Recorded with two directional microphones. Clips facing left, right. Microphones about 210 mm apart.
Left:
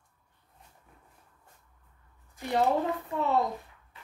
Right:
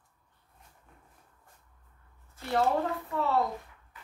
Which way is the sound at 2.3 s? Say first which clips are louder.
Left 1 dB; 15° left (ahead or behind).